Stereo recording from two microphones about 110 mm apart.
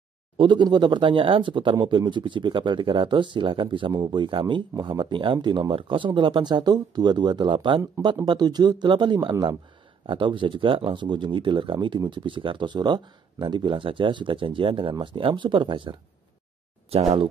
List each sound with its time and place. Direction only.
0.4 s speech: 45° right (ahead or behind)
16.9 s speech: 65° right (ahead or behind)